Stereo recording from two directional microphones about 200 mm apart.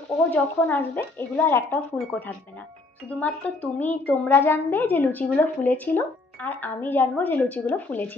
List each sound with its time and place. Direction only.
0.3 s a woman's voice: 10° left (ahead or behind)